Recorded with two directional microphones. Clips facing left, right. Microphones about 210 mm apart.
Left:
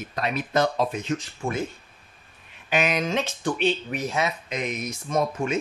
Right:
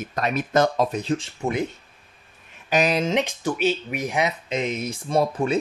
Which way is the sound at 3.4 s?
5° right (ahead or behind).